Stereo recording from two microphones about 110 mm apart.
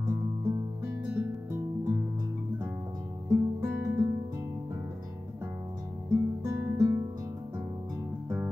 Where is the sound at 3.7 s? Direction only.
25° right (ahead or behind).